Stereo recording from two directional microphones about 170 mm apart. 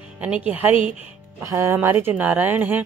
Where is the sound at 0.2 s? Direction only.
10° right (ahead or behind).